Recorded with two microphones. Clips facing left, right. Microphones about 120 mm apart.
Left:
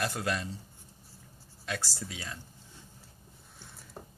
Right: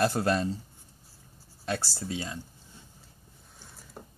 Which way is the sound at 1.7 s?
30° right (ahead or behind).